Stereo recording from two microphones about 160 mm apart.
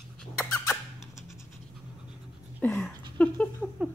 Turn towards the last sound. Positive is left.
turn(degrees=0)  # may be behind; listen again after turning